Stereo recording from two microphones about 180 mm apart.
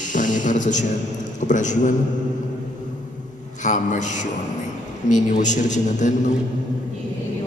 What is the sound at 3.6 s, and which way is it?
A man's voice, 45° left (ahead or behind).